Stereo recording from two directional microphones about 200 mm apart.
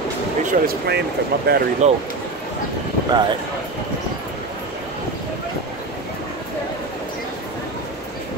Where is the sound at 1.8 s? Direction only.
35° right (ahead or behind).